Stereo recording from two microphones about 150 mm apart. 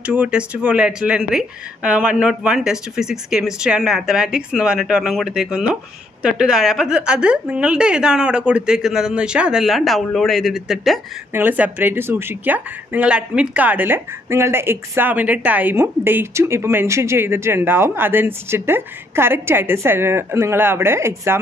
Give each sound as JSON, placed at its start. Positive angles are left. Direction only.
{"t": 0.0, "sound": "a woman's voice", "side_deg": -10}